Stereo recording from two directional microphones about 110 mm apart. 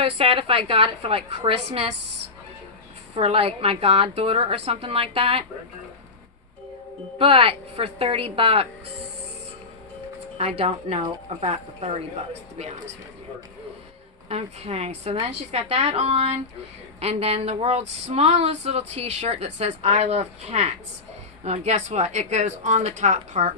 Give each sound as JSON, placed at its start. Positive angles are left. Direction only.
{"t": 0.0, "sound": "a woman's voice", "side_deg": -60}
{"t": 3.2, "sound": "a woman's voice", "side_deg": -60}
{"t": 7.2, "sound": "a woman's voice", "side_deg": -55}
{"t": 10.3, "sound": "a woman's voice", "side_deg": -65}
{"t": 14.3, "sound": "speech", "side_deg": -75}